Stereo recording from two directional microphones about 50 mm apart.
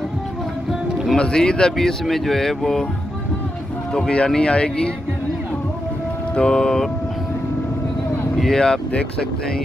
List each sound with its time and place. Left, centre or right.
1.1 s speech: centre
3.9 s speech: left
6.3 s speech: centre
8.4 s speech: centre